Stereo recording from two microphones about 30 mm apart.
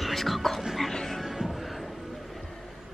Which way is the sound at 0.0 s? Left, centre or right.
Centre.